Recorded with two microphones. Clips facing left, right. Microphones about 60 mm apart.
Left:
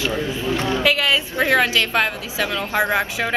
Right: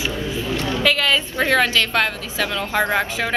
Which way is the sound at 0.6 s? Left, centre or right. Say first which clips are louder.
Left 3 dB; centre.